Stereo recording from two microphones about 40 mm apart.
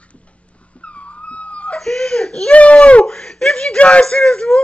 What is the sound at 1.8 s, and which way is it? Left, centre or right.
Whimper, centre.